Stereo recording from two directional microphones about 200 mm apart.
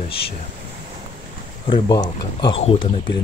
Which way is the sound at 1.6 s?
25° left (ahead or behind).